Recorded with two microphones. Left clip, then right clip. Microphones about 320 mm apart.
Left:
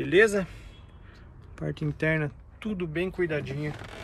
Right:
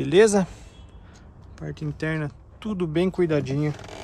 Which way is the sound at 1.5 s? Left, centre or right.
Centre.